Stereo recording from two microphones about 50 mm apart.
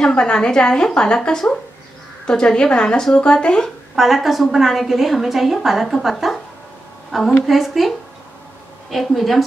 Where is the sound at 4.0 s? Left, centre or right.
Centre.